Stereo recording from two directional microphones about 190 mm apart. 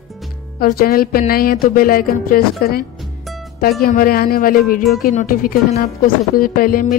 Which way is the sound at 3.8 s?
50° left (ahead or behind).